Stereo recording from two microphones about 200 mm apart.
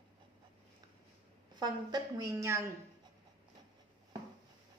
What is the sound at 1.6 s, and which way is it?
A woman's voice, 20° right (ahead or behind).